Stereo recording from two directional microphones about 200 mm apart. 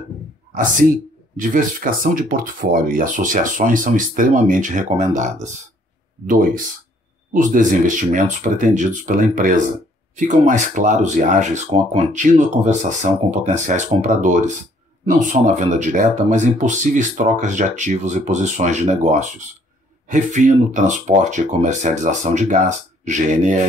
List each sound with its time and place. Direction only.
1.3 s speech: 40° right (ahead or behind)
7.3 s speech: 40° right (ahead or behind)